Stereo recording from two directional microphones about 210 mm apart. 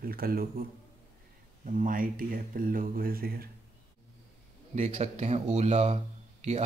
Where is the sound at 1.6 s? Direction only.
40° right (ahead or behind).